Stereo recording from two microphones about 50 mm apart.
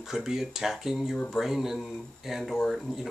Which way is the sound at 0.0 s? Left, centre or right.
Centre.